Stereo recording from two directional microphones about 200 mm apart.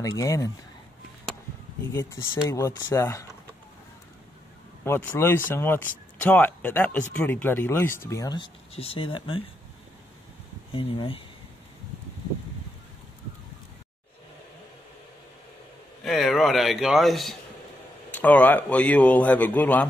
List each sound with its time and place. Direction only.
0.0 s speech: 15° left (ahead or behind)
1.9 s speech: 15° left (ahead or behind)
5.1 s speech: 10° left (ahead or behind)
10.7 s speech: 25° left (ahead or behind)
16.0 s a man's voice: centre (ahead or behind)